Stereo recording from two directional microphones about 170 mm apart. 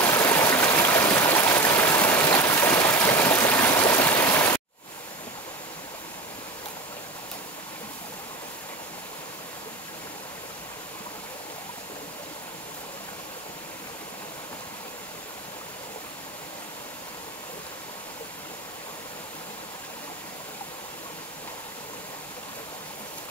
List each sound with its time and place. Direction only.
0.0 s stream: 15° left (ahead or behind)